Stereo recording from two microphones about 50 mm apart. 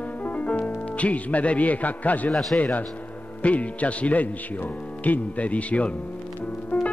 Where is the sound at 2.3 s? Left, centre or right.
Centre.